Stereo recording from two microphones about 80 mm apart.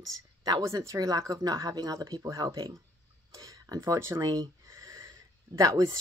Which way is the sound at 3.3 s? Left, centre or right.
Right.